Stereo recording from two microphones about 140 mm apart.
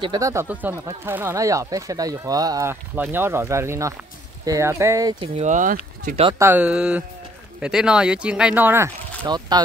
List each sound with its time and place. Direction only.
0.2 s speech: 20° right (ahead or behind)
5.2 s speech: 50° right (ahead or behind); by 6.1 s 70° right (ahead or behind)
6.3 s speech: 15° right (ahead or behind)
9.2 s speech: 30° right (ahead or behind)